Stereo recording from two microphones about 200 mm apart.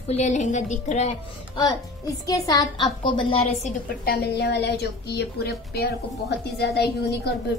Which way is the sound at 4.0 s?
55° left (ahead or behind).